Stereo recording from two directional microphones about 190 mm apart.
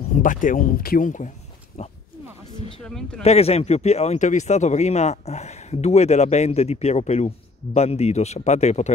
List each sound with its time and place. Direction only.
0.1 s speech: 45° left (ahead or behind)
2.8 s speech: 5° left (ahead or behind)
3.2 s speech: 35° left (ahead or behind)